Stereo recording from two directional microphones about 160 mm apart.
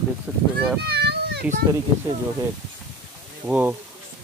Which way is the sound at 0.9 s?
90° right.